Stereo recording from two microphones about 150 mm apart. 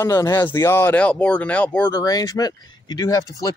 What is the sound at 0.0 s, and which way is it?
Speech, 20° left (ahead or behind).